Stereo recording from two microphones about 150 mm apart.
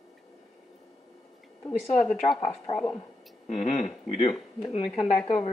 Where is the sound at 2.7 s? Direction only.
45° left (ahead or behind).